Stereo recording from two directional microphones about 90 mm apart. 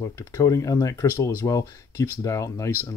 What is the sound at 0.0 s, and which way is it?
Speech, 40° left (ahead or behind).